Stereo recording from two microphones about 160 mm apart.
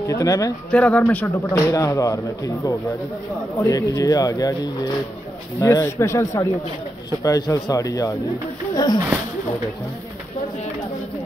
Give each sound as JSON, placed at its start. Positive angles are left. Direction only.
{"t": 0.0, "sound": "speech", "side_deg": 20}
{"t": 0.7, "sound": "speech", "side_deg": 10}